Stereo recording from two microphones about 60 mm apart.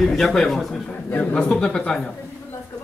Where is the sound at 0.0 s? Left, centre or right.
Centre.